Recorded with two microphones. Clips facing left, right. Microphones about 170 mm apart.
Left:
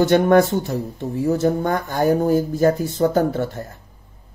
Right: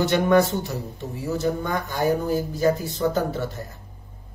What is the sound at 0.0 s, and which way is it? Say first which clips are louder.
Speech: left 4 dB; 50° left (ahead or behind).